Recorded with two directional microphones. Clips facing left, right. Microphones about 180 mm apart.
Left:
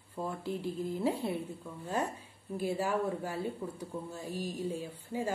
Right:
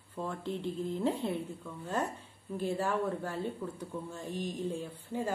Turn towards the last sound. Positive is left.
turn(degrees=10)  # may be behind; listen again after turning